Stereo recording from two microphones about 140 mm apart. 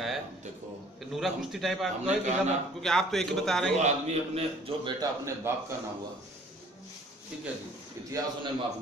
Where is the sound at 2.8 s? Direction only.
5° left (ahead or behind).